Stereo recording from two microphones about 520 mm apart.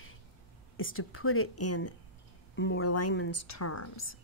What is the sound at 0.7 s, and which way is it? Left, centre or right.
Speech, left.